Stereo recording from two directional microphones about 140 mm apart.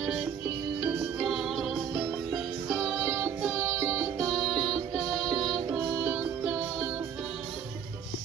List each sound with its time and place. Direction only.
0.8 s music: 5° right (ahead or behind)